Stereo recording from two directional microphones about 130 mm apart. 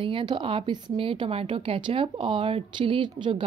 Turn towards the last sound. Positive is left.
turn(degrees=-40)  # may be behind; listen again after turning